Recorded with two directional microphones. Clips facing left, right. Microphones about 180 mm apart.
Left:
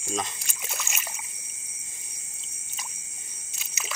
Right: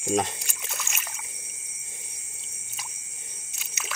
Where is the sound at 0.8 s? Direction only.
10° left (ahead or behind).